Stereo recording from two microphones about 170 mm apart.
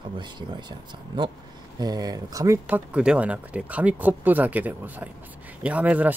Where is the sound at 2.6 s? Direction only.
5° right (ahead or behind).